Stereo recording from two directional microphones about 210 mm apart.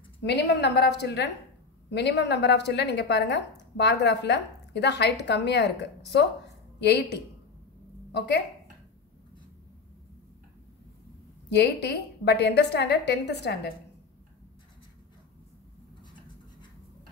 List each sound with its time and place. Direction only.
0.2 s a woman's voice: 55° left (ahead or behind)
11.5 s a woman's voice: 55° left (ahead or behind)